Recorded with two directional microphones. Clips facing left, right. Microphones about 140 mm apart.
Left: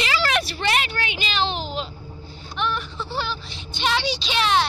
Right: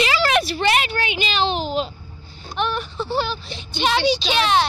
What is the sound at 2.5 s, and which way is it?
Speech, 50° right (ahead or behind).